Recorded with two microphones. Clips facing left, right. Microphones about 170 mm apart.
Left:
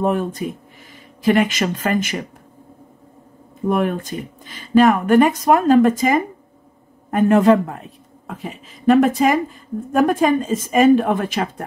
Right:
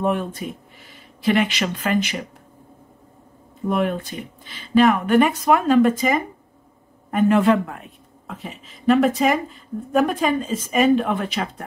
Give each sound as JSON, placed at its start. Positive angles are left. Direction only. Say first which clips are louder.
{"t": 0.0, "sound": "a man's voice", "louder": "left 3 dB", "side_deg": 40}
{"t": 3.6, "sound": "a man's voice", "louder": "left 3 dB", "side_deg": 45}
{"t": 8.3, "sound": "speech", "louder": "left 4 dB", "side_deg": 50}